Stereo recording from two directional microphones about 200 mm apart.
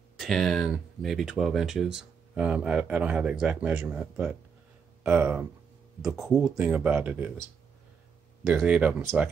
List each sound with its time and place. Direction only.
0.2 s speech: centre (ahead or behind)
8.5 s speech: 5° right (ahead or behind)